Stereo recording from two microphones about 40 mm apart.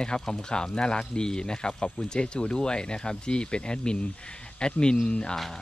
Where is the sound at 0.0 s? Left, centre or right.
Centre.